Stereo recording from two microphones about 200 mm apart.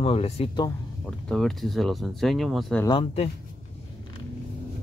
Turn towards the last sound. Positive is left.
turn(degrees=30)  # may be behind; listen again after turning